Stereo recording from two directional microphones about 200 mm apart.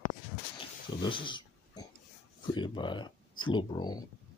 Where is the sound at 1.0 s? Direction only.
25° left (ahead or behind).